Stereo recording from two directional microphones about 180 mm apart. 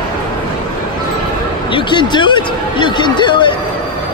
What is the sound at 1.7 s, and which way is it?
Speech, 25° left (ahead or behind).